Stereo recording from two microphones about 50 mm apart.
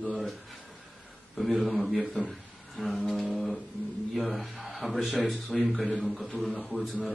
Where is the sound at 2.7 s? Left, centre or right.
Centre.